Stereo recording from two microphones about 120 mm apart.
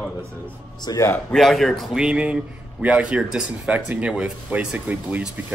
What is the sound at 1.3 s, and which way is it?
Speech, centre (ahead or behind).